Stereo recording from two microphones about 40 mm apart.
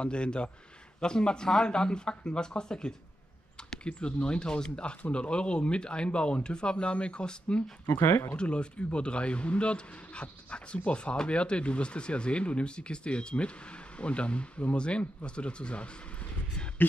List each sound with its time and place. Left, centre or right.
0.0 s speech: left
7.9 s speech: left
8.4 s speech: left